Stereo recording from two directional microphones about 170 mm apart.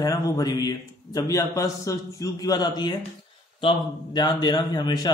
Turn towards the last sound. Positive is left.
turn(degrees=25)  # may be behind; listen again after turning